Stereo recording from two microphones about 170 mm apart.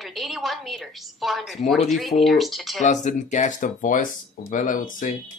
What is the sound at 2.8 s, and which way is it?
Speech, 45° left (ahead or behind).